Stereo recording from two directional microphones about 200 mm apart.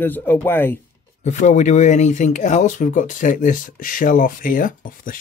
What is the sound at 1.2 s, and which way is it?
Speech, 35° left (ahead or behind).